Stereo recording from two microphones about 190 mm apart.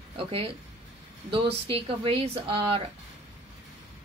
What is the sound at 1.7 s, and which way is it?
Speech, 30° right (ahead or behind).